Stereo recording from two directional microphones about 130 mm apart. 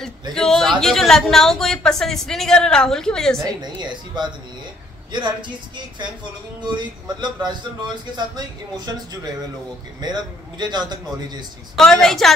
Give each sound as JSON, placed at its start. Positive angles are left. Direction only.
{"t": 0.3, "sound": "a woman's voice", "side_deg": 5}
{"t": 3.4, "sound": "speech", "side_deg": -35}
{"t": 6.8, "sound": "speech", "side_deg": -35}
{"t": 11.7, "sound": "a woman's voice", "side_deg": 5}